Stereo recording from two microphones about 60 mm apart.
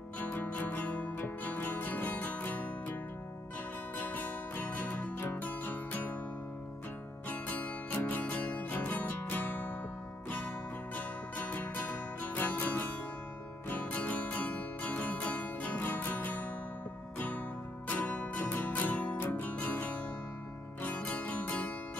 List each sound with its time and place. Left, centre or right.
0.2 s music: left
7.2 s music: left
11.0 s music: left
17.8 s music: left